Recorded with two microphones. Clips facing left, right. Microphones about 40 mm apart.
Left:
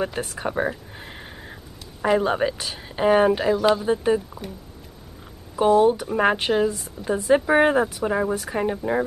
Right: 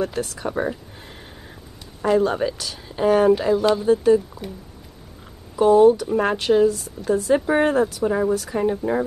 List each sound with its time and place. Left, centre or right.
0.0 s a woman's voice: left
5.8 s a woman's voice: left